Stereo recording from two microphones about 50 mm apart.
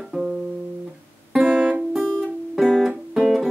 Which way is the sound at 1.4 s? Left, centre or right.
Right.